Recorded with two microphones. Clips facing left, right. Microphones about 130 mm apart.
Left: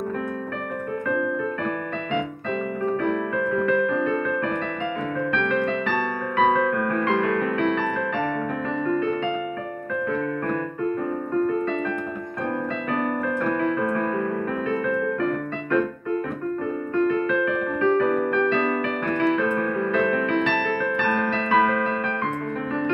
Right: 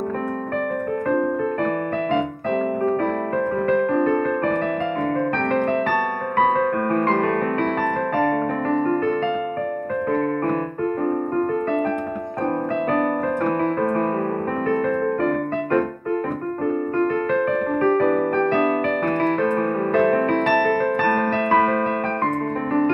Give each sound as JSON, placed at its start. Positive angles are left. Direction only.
{"t": 3.5, "sound": "music", "side_deg": -40}
{"t": 5.5, "sound": "music", "side_deg": -45}
{"t": 8.2, "sound": "keyboard", "side_deg": -45}
{"t": 14.7, "sound": "music", "side_deg": -45}